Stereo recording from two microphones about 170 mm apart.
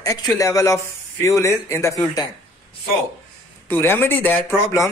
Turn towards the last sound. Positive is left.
turn(degrees=15)  # may be behind; listen again after turning